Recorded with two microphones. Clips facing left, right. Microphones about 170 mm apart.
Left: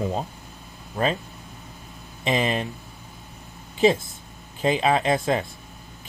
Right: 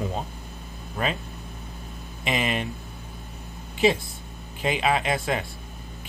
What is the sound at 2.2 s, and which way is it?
Speech, 35° left (ahead or behind).